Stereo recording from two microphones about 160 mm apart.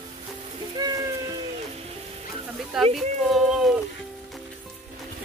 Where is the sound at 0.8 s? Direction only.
25° right (ahead or behind).